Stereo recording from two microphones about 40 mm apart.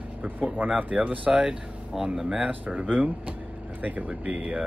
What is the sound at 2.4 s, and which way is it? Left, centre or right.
Speech, right.